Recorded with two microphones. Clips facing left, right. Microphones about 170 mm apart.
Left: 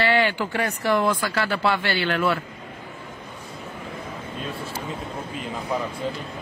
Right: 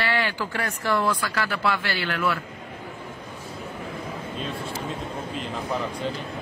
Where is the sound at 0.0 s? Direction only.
25° left (ahead or behind).